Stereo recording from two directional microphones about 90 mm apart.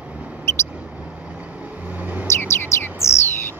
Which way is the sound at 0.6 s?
15° right (ahead or behind).